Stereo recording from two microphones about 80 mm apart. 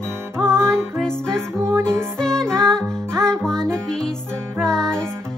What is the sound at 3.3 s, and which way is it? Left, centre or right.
Music, centre.